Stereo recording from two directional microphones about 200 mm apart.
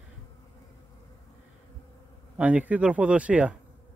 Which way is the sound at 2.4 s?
5° right (ahead or behind).